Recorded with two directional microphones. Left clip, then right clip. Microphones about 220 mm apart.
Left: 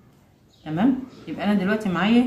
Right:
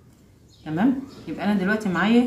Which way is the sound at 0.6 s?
10° left (ahead or behind).